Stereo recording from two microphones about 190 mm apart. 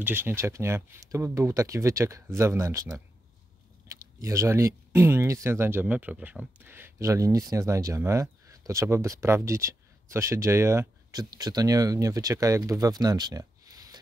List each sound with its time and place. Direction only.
0.0 s speech: 10° right (ahead or behind)